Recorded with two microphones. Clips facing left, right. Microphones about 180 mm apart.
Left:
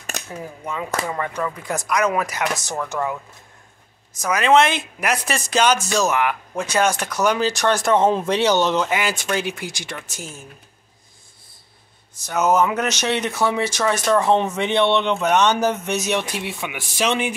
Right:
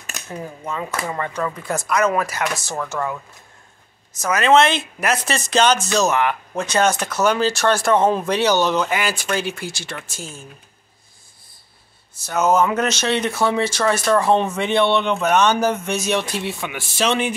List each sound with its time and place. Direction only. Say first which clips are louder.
0.4 s speech: right 2 dB; 10° left (ahead or behind)
12.2 s speech: right 1 dB; 15° left (ahead or behind)